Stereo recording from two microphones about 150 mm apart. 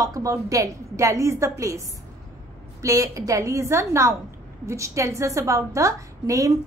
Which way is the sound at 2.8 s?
25° right (ahead or behind).